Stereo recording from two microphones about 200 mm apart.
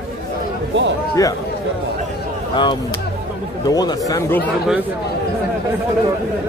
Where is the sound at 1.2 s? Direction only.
15° left (ahead or behind).